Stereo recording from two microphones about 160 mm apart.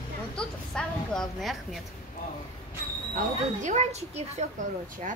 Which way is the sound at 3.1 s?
50° right (ahead or behind).